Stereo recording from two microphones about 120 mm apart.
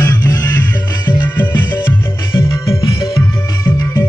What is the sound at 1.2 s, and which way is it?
Music, 15° left (ahead or behind).